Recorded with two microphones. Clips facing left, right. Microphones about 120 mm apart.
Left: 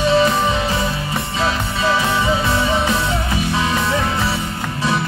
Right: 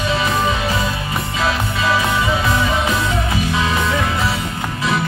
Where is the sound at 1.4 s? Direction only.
30° left (ahead or behind).